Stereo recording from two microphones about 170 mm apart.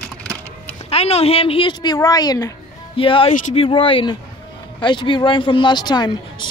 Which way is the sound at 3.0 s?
30° left (ahead or behind).